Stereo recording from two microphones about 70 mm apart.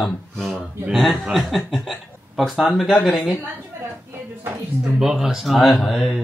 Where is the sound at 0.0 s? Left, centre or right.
Centre.